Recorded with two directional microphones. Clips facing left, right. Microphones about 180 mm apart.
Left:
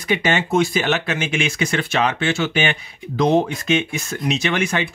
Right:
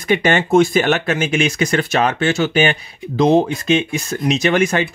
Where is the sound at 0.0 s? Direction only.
50° right (ahead or behind).